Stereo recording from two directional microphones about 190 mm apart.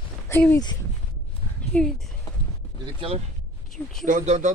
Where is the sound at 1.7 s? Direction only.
5° left (ahead or behind).